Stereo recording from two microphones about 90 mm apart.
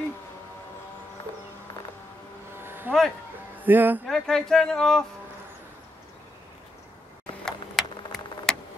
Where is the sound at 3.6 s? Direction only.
20° right (ahead or behind).